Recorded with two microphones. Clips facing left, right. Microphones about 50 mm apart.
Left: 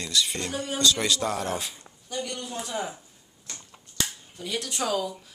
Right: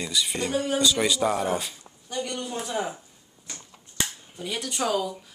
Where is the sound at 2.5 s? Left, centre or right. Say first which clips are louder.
Right 3 dB; centre.